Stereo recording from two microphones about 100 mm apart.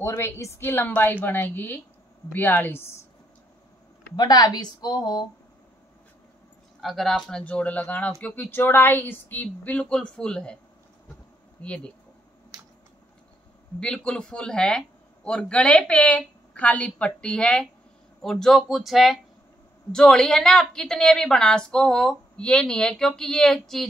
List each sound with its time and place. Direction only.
0.0 s a woman's voice: 25° left (ahead or behind)
4.2 s a woman's voice: 40° left (ahead or behind)
6.8 s a woman's voice: centre (ahead or behind)
11.6 s a woman's voice: 10° left (ahead or behind)
13.7 s a woman's voice: 10° left (ahead or behind)